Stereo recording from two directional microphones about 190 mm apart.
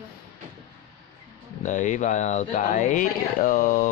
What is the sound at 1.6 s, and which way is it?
Speech, 40° left (ahead or behind).